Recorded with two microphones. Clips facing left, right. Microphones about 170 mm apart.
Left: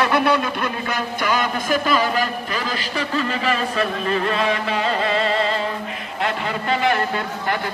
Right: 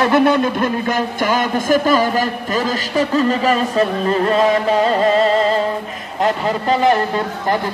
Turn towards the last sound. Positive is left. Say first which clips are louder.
# right 4 dB
turn(degrees=-35)  # may be behind; listen again after turning